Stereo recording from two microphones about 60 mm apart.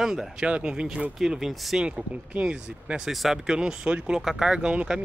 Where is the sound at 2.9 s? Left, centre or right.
Centre.